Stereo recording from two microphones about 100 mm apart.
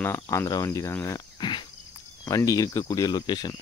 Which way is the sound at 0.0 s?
25° left (ahead or behind).